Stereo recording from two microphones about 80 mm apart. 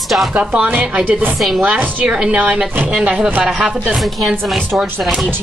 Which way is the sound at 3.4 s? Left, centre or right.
Centre.